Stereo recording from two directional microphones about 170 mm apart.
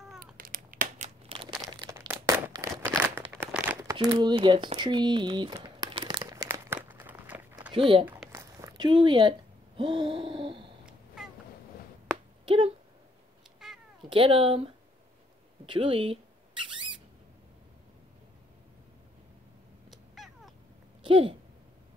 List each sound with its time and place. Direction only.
0.4 s crumpling: 55° right (ahead or behind); by 1.6 s 35° right (ahead or behind)
1.8 s crumpling: 15° right (ahead or behind)
3.9 s speech: 25° right (ahead or behind)
6.3 s crumpling: 15° right (ahead or behind)
7.7 s speech: 30° right (ahead or behind)
8.3 s a sound: 15° right (ahead or behind)
12.4 s a sound: 30° right (ahead or behind)
13.6 s cat: 5° right (ahead or behind)
14.0 s speech: 30° right (ahead or behind)
15.6 s a sound: 30° right (ahead or behind)
19.9 s cat: centre (ahead or behind)
21.0 s a sound: 30° right (ahead or behind)